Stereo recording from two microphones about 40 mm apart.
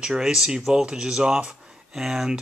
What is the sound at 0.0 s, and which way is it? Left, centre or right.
Speech, centre.